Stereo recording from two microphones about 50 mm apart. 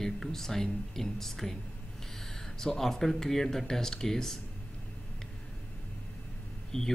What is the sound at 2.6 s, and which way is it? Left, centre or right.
Speech, centre.